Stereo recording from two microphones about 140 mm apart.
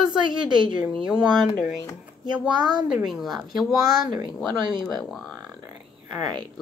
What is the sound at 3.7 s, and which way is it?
Speech, 25° right (ahead or behind).